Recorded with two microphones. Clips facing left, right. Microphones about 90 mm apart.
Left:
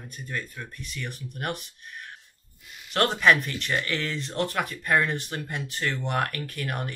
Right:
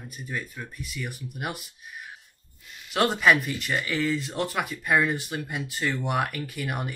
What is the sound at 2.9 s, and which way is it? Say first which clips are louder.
Speech: even; 5° right (ahead or behind).